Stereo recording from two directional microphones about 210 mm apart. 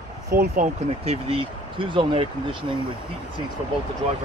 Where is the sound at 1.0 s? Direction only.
25° right (ahead or behind).